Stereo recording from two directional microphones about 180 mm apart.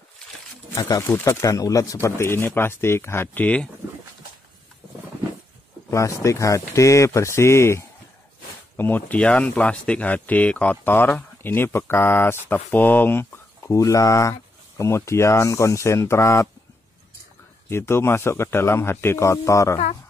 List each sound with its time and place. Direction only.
0.7 s speech: 15° left (ahead or behind)
5.9 s speech: 15° left (ahead or behind)
17.6 s speech: 15° left (ahead or behind)